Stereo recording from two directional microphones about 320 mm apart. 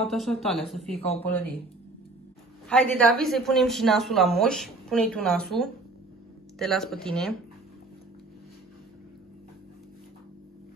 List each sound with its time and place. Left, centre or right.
0.0 s a woman's voice: centre
0.9 s speech: centre
1.2 s a woman's voice: centre
2.7 s a woman's voice: centre